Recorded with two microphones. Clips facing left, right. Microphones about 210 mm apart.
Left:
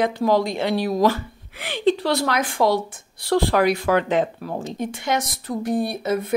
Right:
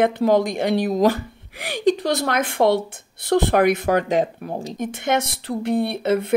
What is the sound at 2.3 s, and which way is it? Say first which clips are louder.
Speech: right 4 dB; 55° right (ahead or behind).